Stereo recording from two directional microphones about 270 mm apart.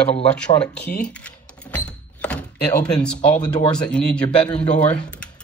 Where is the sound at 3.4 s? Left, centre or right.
Centre.